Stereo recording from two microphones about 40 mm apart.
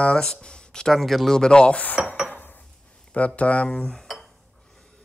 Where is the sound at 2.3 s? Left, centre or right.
Left.